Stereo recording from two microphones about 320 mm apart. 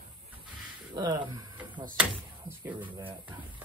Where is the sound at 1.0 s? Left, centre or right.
Centre.